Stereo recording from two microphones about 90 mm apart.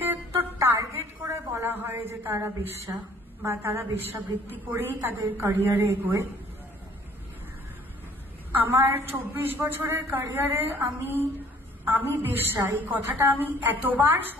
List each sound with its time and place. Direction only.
0.6 s a sound: 30° right (ahead or behind)
1.3 s a woman's voice: 30° right (ahead or behind)
8.5 s a woman's voice: 25° right (ahead or behind)